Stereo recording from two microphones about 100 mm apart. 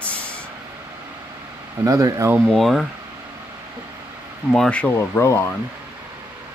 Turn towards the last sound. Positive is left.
turn(degrees=25)  # may be behind; listen again after turning